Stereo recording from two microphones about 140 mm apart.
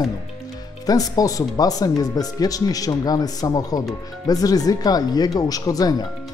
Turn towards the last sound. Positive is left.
turn(degrees=25)  # may be behind; listen again after turning